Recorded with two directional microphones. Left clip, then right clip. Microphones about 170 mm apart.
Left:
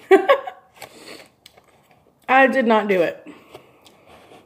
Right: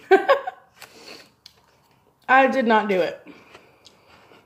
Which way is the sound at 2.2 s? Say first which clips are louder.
Left 2 dB; 10° left (ahead or behind).